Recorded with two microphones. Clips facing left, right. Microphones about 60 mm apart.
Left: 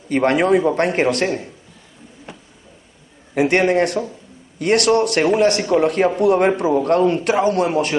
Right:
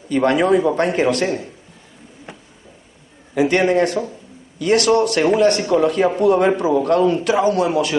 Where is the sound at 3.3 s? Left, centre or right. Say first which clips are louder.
Even; left.